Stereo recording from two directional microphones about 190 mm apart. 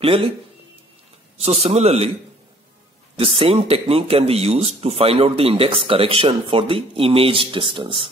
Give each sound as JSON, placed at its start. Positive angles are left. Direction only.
{"t": 0.0, "sound": "speech", "side_deg": -30}
{"t": 1.4, "sound": "speech", "side_deg": -35}
{"t": 3.2, "sound": "speech", "side_deg": -30}